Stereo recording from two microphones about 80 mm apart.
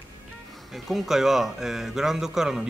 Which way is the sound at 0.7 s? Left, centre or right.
Centre.